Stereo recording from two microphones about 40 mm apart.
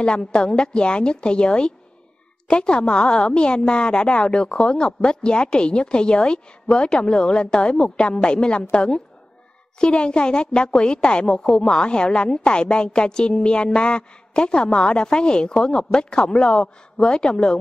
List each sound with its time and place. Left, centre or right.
0.2 s a woman's voice: centre